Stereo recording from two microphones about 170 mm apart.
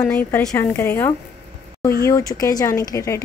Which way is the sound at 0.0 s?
10° left (ahead or behind).